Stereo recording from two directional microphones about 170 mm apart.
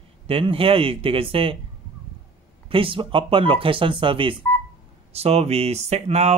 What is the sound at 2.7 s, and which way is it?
Speech, 30° right (ahead or behind).